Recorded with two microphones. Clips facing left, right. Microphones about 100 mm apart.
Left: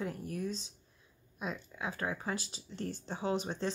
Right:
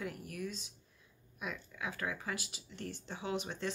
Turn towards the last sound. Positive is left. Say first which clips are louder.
# left 4 dB
turn(degrees=30)  # may be behind; listen again after turning